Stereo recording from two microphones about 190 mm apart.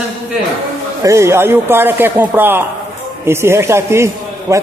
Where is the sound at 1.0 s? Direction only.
15° right (ahead or behind).